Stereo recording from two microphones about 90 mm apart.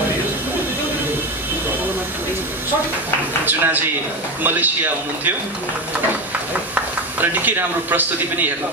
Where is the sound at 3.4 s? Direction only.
20° right (ahead or behind).